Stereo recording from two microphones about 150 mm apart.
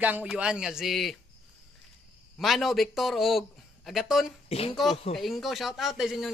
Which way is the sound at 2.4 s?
Centre (ahead or behind).